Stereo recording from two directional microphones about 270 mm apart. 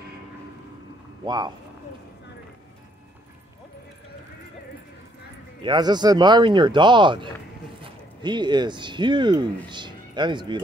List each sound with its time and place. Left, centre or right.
1.2 s speech: centre
5.6 s speech: centre